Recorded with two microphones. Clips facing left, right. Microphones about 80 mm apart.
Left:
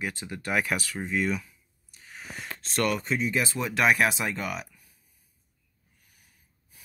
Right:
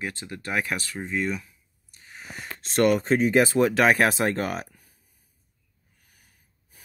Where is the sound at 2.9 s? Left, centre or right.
Right.